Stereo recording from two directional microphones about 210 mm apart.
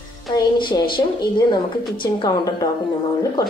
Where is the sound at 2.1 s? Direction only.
20° left (ahead or behind).